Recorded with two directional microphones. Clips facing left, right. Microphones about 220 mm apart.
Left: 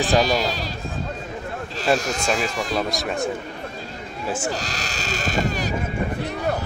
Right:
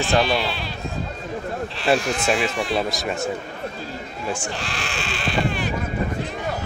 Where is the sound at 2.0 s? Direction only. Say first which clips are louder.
Right 2 dB; 40° left (ahead or behind).